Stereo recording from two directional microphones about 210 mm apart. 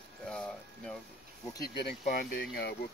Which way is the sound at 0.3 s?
5° left (ahead or behind).